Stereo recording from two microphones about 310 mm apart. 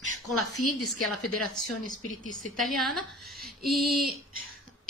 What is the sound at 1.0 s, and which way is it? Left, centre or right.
A woman's voice, centre.